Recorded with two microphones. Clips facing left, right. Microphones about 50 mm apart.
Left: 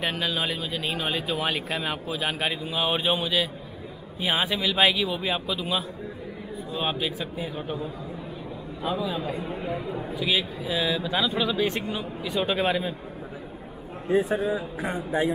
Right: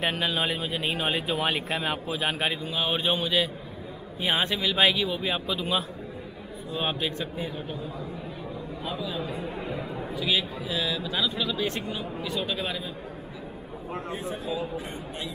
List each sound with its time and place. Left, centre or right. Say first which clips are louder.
0.0 s a man's voice: right 1 dB; centre
8.8 s a man's voice: left 5 dB; centre
12.4 s a man's voice: left 7 dB; left
14.1 s a man's voice: left 11 dB; left